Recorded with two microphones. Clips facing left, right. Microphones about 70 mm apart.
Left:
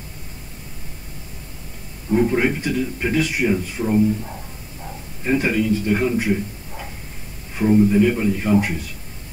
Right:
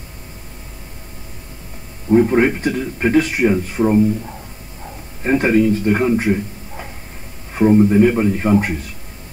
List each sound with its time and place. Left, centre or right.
2.0 s a man's voice: right
5.2 s a man's voice: right